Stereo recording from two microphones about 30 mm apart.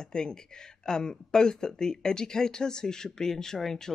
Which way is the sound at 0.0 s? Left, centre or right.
Left.